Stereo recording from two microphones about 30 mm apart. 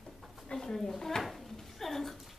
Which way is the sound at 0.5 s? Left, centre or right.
Left.